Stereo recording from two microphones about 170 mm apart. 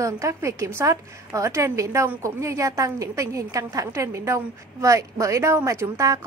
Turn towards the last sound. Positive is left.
turn(degrees=-20)  # may be behind; listen again after turning